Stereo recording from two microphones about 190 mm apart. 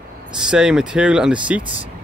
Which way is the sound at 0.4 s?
5° right (ahead or behind).